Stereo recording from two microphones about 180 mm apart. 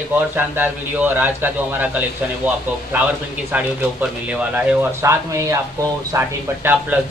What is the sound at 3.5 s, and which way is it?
A man's voice, 5° right (ahead or behind).